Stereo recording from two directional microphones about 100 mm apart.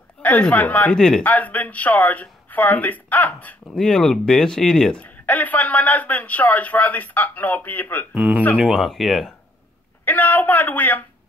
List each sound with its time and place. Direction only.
0.2 s speech: 15° left (ahead or behind)
5.0 s speech: 15° left (ahead or behind)
8.1 s speech: 15° right (ahead or behind)
8.5 s speech: 5° right (ahead or behind)
10.0 s speech: 15° left (ahead or behind)